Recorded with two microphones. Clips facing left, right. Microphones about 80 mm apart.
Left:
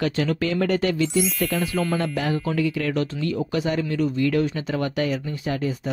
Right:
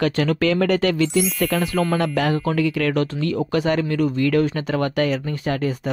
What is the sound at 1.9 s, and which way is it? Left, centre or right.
Speech, right.